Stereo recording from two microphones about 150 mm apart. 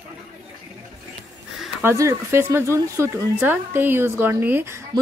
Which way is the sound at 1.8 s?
20° right (ahead or behind).